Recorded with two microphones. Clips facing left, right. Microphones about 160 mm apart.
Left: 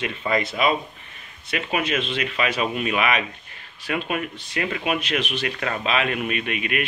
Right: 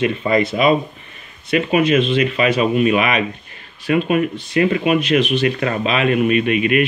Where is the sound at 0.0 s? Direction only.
50° right (ahead or behind).